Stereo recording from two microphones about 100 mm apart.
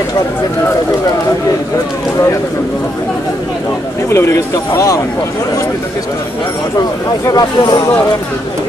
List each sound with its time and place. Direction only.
4.1 s speech: 30° left (ahead or behind)
7.2 s speech: 40° left (ahead or behind)